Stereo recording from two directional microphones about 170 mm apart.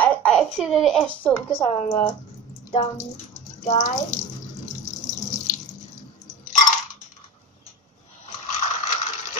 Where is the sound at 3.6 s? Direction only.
45° left (ahead or behind).